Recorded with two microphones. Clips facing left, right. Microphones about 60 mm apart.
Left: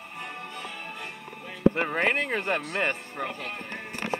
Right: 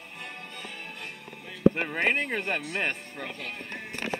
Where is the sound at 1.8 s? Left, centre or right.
Left.